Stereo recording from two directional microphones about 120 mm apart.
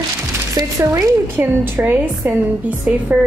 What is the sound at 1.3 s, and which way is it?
A woman's voice, 15° right (ahead or behind).